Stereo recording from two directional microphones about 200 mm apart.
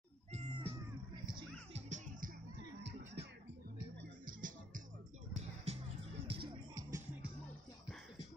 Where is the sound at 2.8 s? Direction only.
55° right (ahead or behind).